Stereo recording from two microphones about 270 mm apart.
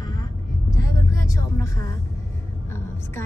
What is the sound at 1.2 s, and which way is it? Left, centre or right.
Vehicle, centre.